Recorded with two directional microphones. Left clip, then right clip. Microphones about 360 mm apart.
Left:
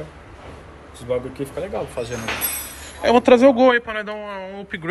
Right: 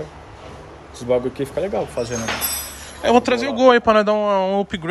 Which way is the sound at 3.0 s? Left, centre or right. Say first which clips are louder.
Left 4 dB; centre.